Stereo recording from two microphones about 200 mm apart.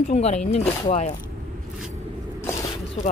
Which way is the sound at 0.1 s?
35° left (ahead or behind).